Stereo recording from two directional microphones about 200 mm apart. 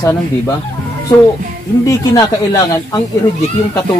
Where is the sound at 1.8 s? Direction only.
15° left (ahead or behind).